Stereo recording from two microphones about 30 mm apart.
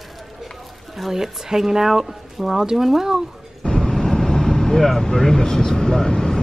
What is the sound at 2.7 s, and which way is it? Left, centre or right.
Speech, centre.